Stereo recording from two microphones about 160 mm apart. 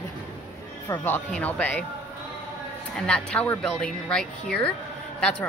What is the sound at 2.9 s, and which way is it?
A woman's voice, 5° left (ahead or behind).